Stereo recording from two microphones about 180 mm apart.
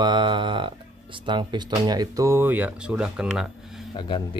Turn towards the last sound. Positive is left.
turn(degrees=25)  # may be behind; listen again after turning